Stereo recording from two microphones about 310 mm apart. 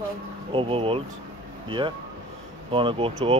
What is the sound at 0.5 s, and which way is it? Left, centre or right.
Speech, centre.